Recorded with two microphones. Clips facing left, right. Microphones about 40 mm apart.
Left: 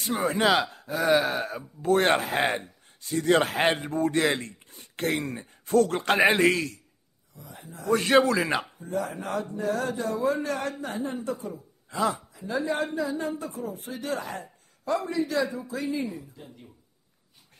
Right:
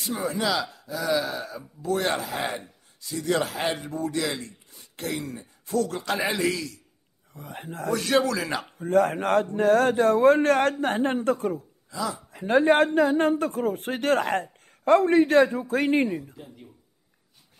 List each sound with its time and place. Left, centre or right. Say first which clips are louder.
0.0 s a man's voice: left 3 dB; left
7.3 s speech: right 7 dB; right
7.9 s a man's voice: left 3 dB; left
8.7 s speech: right 9 dB; right
11.9 s speech: left 4 dB; left
12.3 s speech: right 9 dB; right